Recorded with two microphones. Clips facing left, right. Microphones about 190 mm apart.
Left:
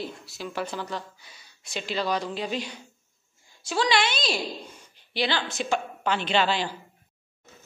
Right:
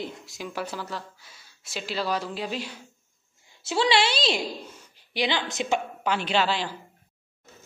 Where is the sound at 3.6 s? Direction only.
25° right (ahead or behind).